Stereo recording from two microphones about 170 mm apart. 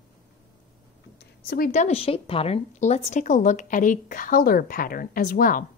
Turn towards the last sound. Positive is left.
turn(degrees=55)  # may be behind; listen again after turning